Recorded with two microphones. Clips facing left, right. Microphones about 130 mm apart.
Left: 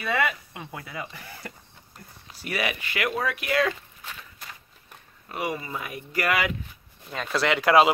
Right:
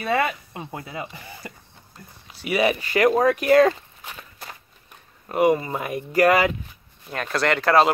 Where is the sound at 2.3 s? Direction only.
5° right (ahead or behind).